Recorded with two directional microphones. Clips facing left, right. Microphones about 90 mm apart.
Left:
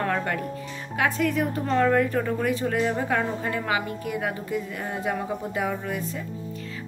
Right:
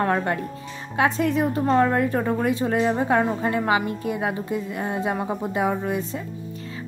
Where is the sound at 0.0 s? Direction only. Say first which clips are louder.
Right 4 dB; 25° right (ahead or behind).